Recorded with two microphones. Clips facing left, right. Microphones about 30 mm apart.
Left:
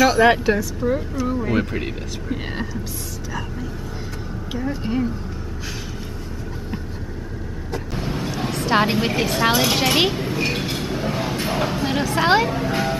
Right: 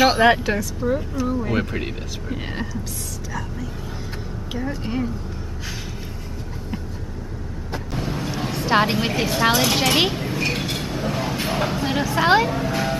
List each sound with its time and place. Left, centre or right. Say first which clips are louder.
0.3 s speech: left 1 dB; centre
4.5 s speech: left 2 dB; centre
8.3 s a sound: even; centre
9.0 s speech: even; centre